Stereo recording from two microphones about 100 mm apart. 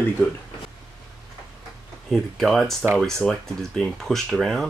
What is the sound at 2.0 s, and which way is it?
Speech, centre (ahead or behind).